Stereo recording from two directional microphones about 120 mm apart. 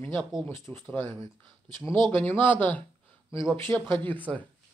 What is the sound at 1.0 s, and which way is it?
Speech, 40° right (ahead or behind).